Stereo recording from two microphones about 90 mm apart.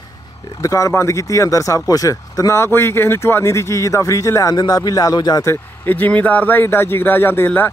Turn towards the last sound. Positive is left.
turn(degrees=20)  # may be behind; listen again after turning